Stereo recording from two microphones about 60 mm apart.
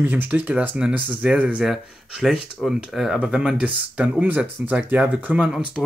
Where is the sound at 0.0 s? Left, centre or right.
Right.